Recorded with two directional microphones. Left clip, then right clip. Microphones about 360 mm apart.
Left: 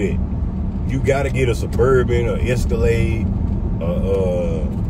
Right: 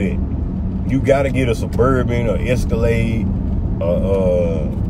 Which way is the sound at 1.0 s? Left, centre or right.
Centre.